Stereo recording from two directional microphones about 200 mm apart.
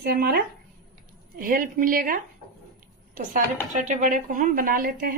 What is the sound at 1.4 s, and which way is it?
Speech, 45° right (ahead or behind).